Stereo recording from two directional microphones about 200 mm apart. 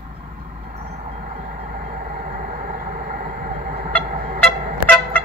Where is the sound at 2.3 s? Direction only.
40° right (ahead or behind).